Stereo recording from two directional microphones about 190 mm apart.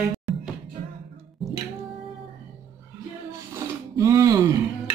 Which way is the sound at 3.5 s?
15° right (ahead or behind).